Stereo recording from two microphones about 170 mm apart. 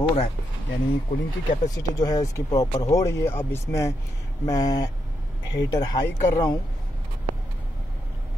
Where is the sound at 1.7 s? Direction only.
20° left (ahead or behind).